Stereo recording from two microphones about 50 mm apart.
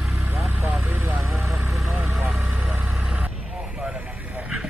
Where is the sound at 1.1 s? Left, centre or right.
Centre.